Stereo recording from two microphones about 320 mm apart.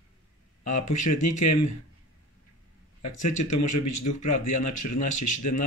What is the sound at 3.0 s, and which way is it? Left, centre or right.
Speech, left.